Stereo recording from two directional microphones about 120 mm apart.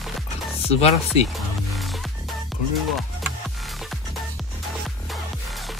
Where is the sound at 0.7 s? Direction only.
60° left (ahead or behind).